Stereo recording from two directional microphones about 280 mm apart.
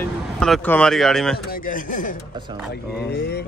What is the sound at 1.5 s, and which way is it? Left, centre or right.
Speech, left.